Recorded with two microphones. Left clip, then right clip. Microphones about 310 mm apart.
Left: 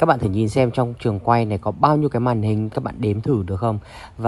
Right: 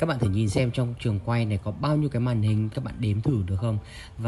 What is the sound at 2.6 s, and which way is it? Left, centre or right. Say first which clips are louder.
Speech: left 8 dB; centre.